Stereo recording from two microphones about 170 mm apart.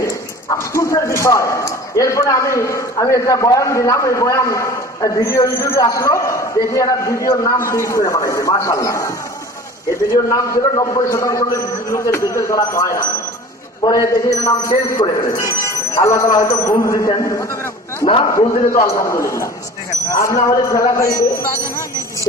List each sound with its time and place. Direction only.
0.0 s speech: 15° left (ahead or behind)
10.3 s a man's voice: 20° left (ahead or behind)
18.0 s a man's voice: 30° left (ahead or behind)
18.9 s a man's voice: 15° left (ahead or behind)